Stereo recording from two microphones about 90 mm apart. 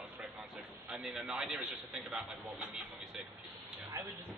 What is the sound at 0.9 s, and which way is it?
A man's voice, 10° right (ahead or behind).